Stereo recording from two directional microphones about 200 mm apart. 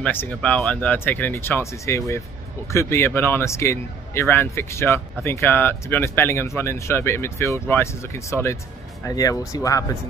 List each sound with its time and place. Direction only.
0.0 s speech: 10° left (ahead or behind)